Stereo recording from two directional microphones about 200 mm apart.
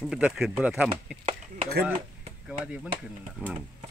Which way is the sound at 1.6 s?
50° right (ahead or behind).